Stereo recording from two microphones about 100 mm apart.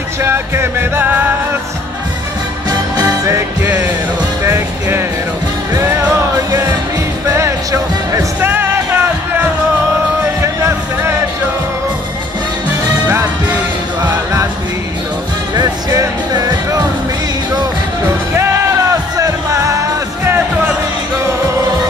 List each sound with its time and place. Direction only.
0.2 s music: 25° right (ahead or behind)
3.0 s music: 30° right (ahead or behind)
7.2 s music: 30° right (ahead or behind)
8.4 s music: 20° right (ahead or behind)
10.4 s a sound: 25° right (ahead or behind)
15.9 s music: 35° right (ahead or behind)
18.3 s music: 25° right (ahead or behind)